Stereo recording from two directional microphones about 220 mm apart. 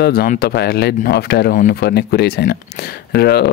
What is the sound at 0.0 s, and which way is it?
Speech, 45° left (ahead or behind).